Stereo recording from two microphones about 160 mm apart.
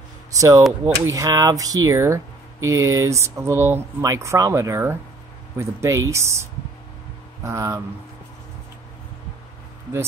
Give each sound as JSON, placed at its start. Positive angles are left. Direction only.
{"t": 0.4, "sound": "speech", "side_deg": -20}
{"t": 7.4, "sound": "speech", "side_deg": -15}